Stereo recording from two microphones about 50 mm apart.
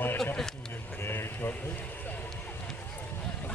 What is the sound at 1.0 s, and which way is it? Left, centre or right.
Speech, left.